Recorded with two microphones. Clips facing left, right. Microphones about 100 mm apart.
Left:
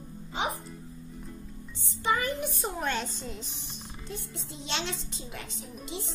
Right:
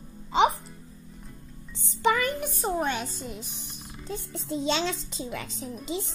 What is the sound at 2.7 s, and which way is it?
Speech, 15° right (ahead or behind).